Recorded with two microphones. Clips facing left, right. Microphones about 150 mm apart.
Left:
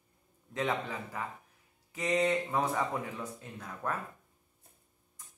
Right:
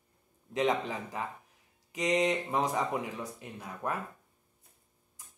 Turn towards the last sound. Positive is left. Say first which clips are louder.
# right 1 dB
turn(degrees=-15)  # may be behind; listen again after turning